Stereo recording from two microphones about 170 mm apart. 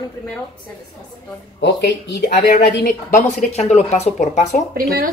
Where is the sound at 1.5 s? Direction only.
90° left.